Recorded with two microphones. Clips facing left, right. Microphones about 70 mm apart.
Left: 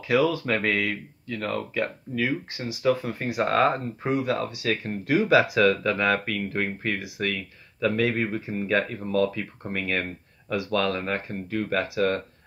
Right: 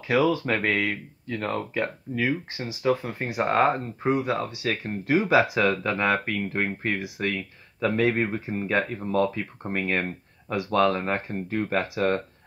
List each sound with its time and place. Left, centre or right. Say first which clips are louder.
0.1 s speech: even; right
0.6 s speech: even; centre